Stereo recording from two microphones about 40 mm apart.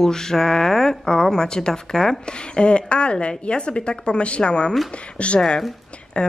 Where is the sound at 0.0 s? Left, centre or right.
Centre.